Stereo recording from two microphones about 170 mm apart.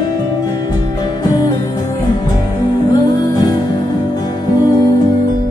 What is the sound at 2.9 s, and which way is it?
Music, 25° left (ahead or behind).